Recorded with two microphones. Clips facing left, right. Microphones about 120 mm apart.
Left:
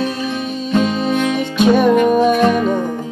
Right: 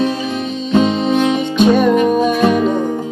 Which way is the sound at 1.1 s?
25° right (ahead or behind).